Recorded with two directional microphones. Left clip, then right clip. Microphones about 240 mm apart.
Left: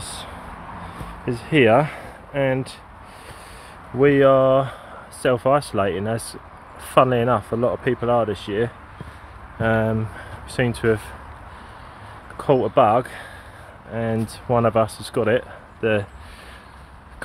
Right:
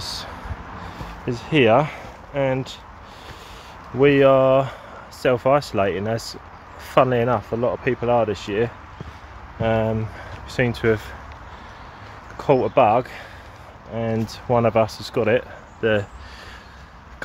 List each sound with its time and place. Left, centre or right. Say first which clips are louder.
1.2 s speech: left 1 dB; centre
4.0 s speech: even; centre
12.4 s speech: even; centre